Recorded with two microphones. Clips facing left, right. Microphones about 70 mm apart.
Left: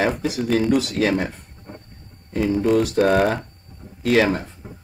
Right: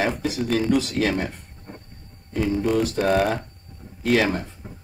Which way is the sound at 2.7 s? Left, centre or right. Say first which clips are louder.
Left 5 dB; left.